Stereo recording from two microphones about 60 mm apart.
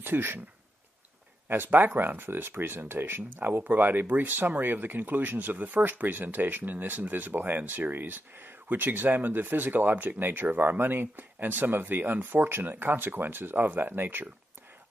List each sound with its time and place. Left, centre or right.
0.0 s speech: right
1.5 s speech: right